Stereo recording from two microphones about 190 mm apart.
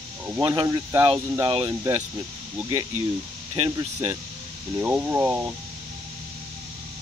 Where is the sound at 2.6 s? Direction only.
15° right (ahead or behind).